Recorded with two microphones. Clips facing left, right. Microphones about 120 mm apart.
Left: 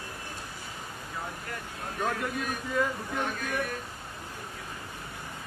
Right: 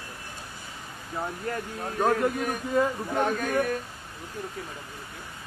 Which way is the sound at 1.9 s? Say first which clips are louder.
Right 7 dB; 35° right (ahead or behind).